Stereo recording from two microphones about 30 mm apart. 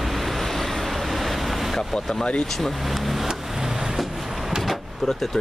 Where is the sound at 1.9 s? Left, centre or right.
Left.